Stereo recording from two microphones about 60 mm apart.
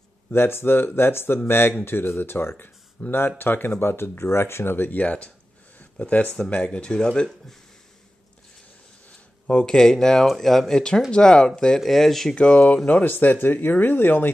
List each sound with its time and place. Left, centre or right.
0.3 s speech: left
5.8 s a sound: left
6.3 s speech: centre
9.5 s speech: centre
11.1 s speech: centre
11.8 s speech: centre
12.4 s speech: left